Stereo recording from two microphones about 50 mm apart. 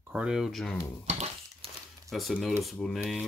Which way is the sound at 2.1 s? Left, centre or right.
Centre.